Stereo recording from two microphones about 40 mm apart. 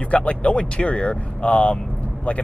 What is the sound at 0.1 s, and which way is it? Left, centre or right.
Speech, left.